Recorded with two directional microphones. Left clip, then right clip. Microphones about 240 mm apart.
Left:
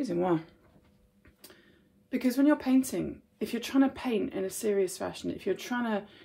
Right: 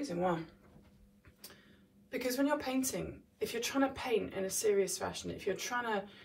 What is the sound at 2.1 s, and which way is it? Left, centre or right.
A woman's voice, left.